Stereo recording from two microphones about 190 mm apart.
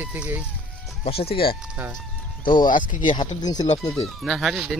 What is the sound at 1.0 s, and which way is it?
Speech, 30° left (ahead or behind).